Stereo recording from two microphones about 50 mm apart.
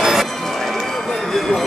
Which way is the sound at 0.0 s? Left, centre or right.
Centre.